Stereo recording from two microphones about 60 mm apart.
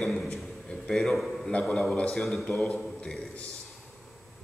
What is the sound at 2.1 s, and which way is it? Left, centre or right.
Mantra, centre.